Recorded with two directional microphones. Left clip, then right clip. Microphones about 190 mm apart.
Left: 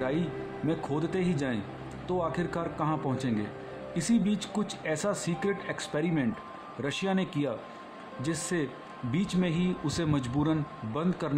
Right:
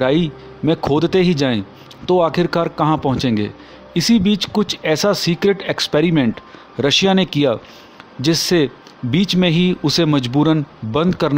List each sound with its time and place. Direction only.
0.7 s speech: 45° right (ahead or behind)